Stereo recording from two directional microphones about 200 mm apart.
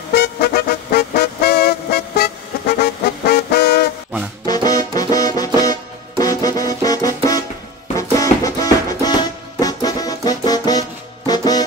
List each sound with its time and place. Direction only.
0.1 s vehicle: 55° left (ahead or behind)
4.5 s music: 20° left (ahead or behind)
8.2 s music: 15° left (ahead or behind)